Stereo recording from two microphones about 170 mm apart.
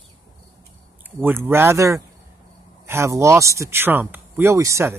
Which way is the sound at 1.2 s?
15° right (ahead or behind).